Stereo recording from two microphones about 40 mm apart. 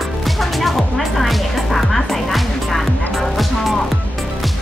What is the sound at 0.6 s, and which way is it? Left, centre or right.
Music, centre.